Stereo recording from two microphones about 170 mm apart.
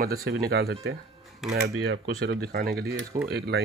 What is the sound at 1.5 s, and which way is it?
Speech, 80° right.